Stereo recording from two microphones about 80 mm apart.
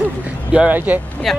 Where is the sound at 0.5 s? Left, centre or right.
Centre.